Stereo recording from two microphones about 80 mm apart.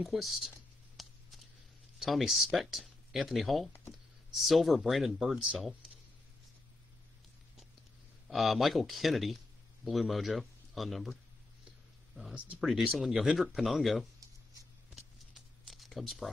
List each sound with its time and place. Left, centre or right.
0.0 s speech: centre
1.0 s a sound: centre
2.0 s speech: centre
8.3 s speech: centre
12.5 s speech: centre
15.0 s a sound: centre